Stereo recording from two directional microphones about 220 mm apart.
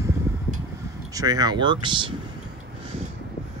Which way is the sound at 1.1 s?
15° right (ahead or behind).